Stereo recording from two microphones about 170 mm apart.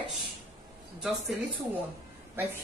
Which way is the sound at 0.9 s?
5° right (ahead or behind).